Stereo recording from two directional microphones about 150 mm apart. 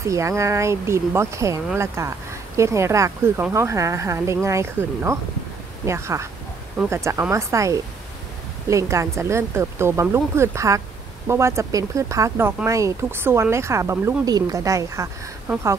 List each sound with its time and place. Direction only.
0.0 s speech: 20° right (ahead or behind)